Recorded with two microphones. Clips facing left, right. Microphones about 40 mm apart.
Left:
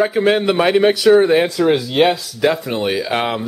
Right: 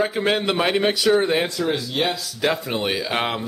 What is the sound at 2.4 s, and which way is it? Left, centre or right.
Speech, centre.